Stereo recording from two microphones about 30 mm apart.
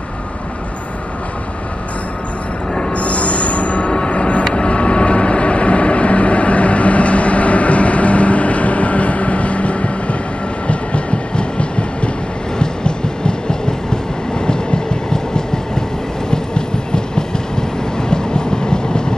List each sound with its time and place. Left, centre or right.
2.9 s train: left
4.5 s vehicle: left
10.7 s train: left